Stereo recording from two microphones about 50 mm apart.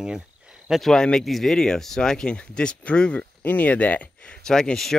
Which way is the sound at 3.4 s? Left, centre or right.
Left.